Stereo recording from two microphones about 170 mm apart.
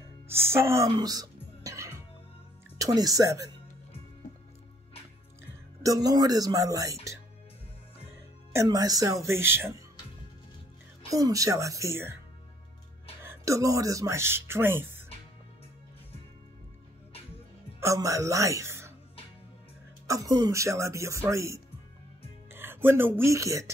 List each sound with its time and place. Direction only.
0.3 s music: 15° right (ahead or behind)
2.8 s speech: 20° right (ahead or behind)
5.8 s speech: 20° right (ahead or behind)
8.5 s speech: 20° right (ahead or behind)
11.1 s speech: 20° right (ahead or behind)
13.2 s speech: 15° right (ahead or behind)
17.7 s speech: 20° right (ahead or behind)
20.1 s speech: 20° right (ahead or behind)